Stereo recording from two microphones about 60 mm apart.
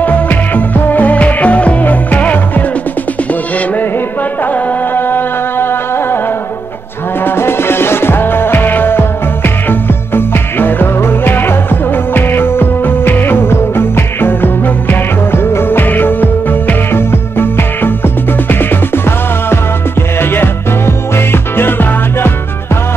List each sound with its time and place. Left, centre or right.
0.0 s music: left
4.5 s music: left
7.2 s music: left